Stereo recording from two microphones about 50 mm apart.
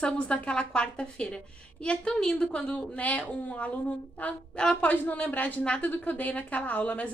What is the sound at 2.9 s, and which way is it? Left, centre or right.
A woman's voice, left.